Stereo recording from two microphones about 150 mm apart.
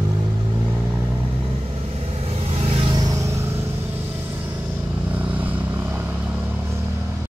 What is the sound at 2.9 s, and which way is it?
Vehicle, 25° right (ahead or behind).